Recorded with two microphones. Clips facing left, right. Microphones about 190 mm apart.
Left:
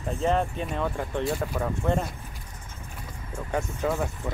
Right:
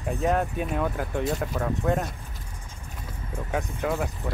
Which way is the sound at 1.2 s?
5° left (ahead or behind).